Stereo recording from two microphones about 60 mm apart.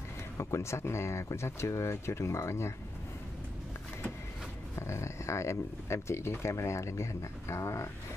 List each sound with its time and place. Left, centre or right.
0.4 s speech: left
4.7 s speech: left